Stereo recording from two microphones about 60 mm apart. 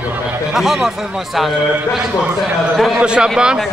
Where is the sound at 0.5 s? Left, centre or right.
Centre.